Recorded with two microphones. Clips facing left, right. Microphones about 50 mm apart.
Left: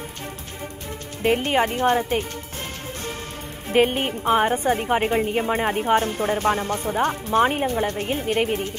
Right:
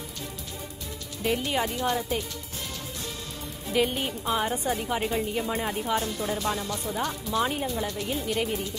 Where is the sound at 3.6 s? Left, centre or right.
Left.